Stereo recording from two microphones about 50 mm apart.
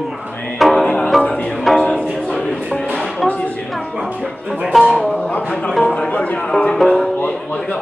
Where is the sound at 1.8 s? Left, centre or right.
Left.